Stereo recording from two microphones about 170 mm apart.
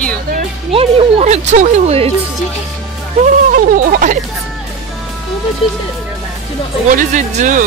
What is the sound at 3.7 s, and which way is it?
Speech, 50° right (ahead or behind).